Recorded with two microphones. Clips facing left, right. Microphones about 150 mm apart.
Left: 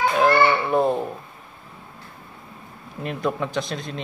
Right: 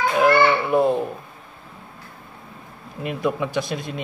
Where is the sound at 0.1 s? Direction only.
5° right (ahead or behind).